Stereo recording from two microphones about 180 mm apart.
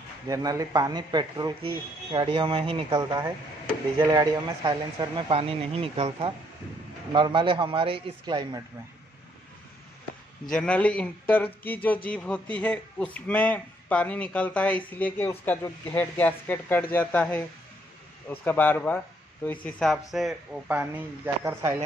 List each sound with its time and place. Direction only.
0.3 s a man's voice: 20° right (ahead or behind)
10.5 s a man's voice: 5° left (ahead or behind); by 21.7 s 15° right (ahead or behind)